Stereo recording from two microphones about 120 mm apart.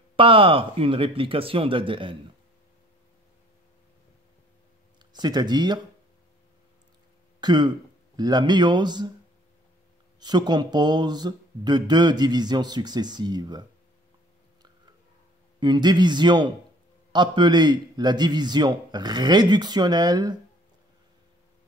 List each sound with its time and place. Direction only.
0.1 s speech: 45° right (ahead or behind)
5.1 s speech: 35° right (ahead or behind)
7.3 s speech: 35° right (ahead or behind)
10.2 s speech: 35° right (ahead or behind)
15.6 s speech: 35° right (ahead or behind)